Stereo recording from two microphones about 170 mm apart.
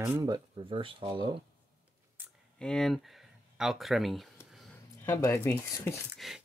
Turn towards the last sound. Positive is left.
turn(degrees=0)  # may be behind; listen again after turning